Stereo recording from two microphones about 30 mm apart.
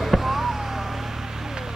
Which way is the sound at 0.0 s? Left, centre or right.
Centre.